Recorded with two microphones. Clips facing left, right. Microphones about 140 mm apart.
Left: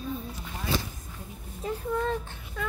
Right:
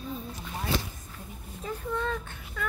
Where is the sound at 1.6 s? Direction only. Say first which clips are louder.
Left 3 dB; 35° left (ahead or behind).